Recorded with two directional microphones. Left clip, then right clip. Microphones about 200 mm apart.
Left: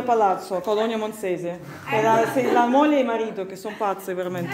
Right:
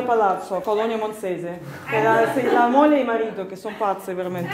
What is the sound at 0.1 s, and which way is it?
A woman's voice, 25° left (ahead or behind).